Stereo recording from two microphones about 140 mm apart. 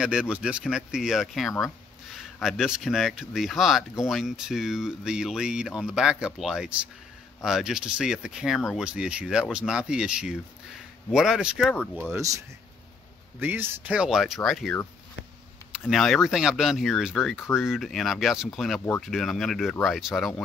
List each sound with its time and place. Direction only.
0.0 s speech: 5° right (ahead or behind)
12.1 s speech: 25° right (ahead or behind)
13.4 s speech: 15° right (ahead or behind)